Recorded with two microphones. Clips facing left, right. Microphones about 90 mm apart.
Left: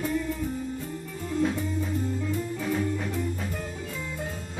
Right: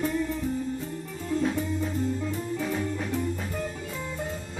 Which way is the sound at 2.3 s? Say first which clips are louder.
Even; 20° right (ahead or behind).